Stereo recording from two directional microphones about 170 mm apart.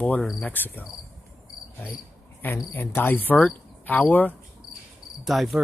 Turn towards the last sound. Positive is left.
turn(degrees=0)  # may be behind; listen again after turning